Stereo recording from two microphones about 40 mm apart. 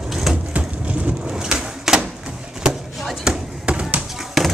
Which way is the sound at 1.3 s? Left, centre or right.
Centre.